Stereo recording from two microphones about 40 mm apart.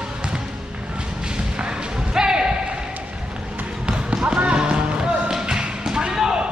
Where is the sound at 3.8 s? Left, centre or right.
Right.